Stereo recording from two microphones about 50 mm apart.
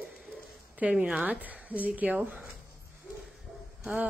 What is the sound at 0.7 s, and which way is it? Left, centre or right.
Speech, right.